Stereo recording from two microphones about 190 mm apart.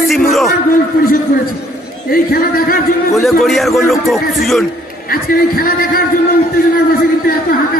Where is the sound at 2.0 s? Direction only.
50° left (ahead or behind).